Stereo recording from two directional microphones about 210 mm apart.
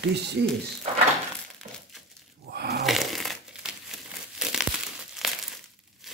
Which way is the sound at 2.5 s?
50° right (ahead or behind).